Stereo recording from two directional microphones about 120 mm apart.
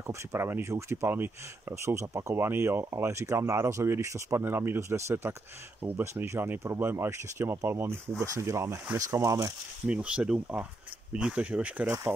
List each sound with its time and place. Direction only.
0.0 s speech: 25° right (ahead or behind)
9.8 s speech: 10° right (ahead or behind)